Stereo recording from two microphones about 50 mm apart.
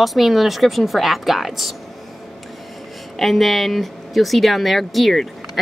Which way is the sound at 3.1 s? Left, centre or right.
Centre.